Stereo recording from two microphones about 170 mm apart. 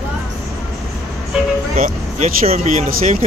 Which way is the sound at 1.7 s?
50° right (ahead or behind).